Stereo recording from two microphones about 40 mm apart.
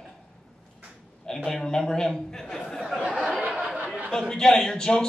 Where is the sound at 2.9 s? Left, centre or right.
Right.